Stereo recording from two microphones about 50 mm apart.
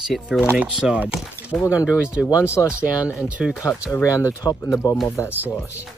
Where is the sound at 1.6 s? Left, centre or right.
Left.